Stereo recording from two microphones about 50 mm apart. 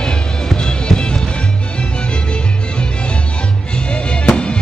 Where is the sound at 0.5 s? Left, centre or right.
Centre.